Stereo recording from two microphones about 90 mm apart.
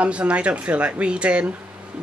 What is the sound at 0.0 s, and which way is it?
Speech, 15° right (ahead or behind).